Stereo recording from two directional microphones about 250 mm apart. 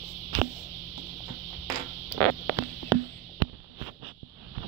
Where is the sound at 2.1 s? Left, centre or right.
Centre.